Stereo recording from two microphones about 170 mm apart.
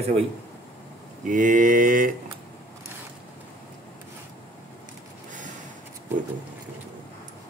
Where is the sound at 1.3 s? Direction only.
50° right (ahead or behind).